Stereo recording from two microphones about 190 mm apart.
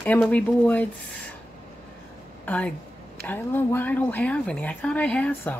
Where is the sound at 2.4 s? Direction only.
5° left (ahead or behind).